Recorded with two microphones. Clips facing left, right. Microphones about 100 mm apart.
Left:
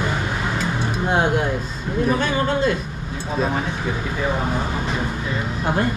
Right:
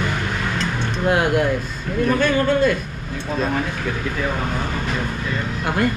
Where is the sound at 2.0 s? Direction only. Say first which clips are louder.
Right 2 dB; 15° left (ahead or behind).